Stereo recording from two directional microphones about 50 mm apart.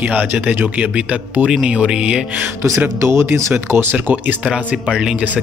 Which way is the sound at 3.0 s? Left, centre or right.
Right.